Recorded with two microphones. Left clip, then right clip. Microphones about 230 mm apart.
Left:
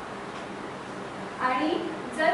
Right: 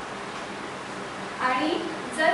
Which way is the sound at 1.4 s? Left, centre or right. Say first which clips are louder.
Right 1 dB; centre.